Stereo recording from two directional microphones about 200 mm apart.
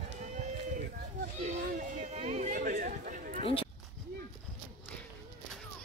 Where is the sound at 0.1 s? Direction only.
35° right (ahead or behind).